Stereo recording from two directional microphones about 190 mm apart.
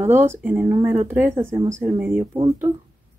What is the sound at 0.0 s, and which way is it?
Speech, 15° right (ahead or behind).